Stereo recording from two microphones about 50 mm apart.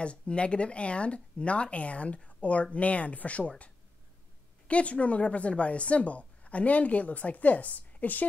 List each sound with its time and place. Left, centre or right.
0.0 s speech: left